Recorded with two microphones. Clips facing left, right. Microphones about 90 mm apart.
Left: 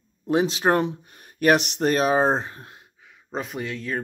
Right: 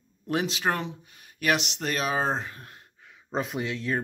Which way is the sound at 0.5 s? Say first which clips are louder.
Left 7 dB; 40° left (ahead or behind).